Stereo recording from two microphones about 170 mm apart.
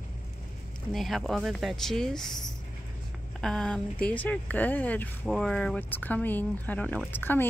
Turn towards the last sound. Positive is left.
turn(degrees=10)  # may be behind; listen again after turning